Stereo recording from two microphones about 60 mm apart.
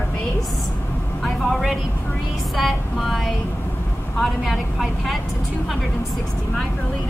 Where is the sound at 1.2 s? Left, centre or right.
Centre.